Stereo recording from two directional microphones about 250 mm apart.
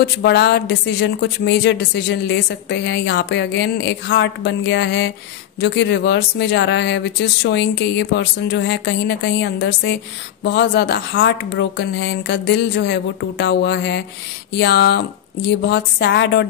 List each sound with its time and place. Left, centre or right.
0.0 s speech: left